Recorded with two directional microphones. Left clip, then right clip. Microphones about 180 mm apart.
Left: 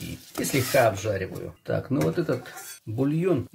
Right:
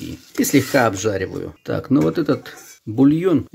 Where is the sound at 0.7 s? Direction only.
50° right (ahead or behind).